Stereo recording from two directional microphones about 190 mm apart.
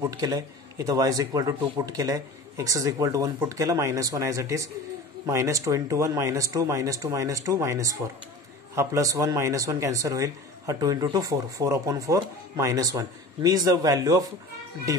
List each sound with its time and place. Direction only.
0.0 s speech: 20° right (ahead or behind)